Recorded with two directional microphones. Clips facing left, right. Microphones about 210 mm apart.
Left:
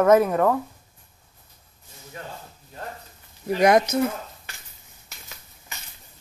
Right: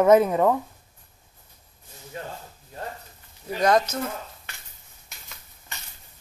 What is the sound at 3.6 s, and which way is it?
Speech, 15° left (ahead or behind).